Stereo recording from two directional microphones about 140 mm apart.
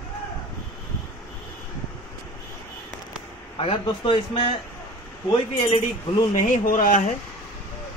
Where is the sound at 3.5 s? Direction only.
35° left (ahead or behind).